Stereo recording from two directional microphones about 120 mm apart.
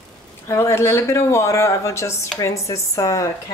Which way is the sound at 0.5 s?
20° left (ahead or behind).